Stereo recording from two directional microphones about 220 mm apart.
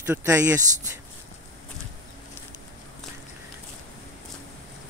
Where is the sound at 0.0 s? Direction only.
10° right (ahead or behind).